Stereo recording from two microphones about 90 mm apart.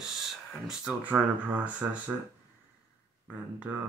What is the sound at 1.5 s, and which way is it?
Speech, 15° right (ahead or behind).